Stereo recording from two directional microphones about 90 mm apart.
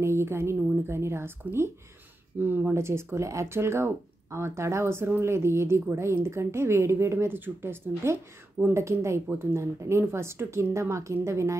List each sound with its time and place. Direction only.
0.0 s speech: 30° right (ahead or behind)